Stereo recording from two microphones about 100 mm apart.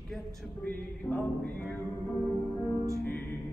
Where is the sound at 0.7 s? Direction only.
20° left (ahead or behind).